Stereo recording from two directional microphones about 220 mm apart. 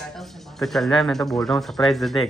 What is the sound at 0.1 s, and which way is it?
Speech, centre (ahead or behind).